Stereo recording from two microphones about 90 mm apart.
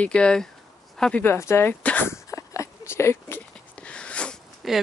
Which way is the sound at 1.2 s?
25° left (ahead or behind).